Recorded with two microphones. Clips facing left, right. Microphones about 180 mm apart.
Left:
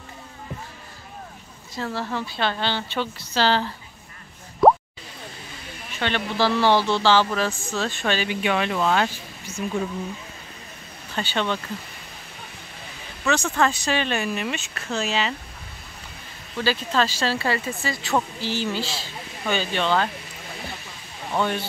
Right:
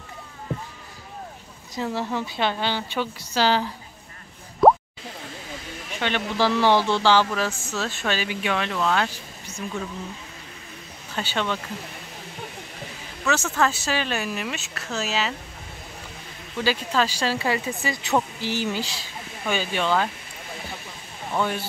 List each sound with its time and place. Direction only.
1.8 s speech: 15° right (ahead or behind)
4.6 s plop: centre (ahead or behind)
5.9 s speech: 10° right (ahead or behind); by 9.7 s 5° left (ahead or behind)
11.1 s speech: 5° right (ahead or behind)
13.2 s speech: 5° right (ahead or behind)
16.5 s speech: 10° right (ahead or behind)
21.4 s speech: 5° right (ahead or behind)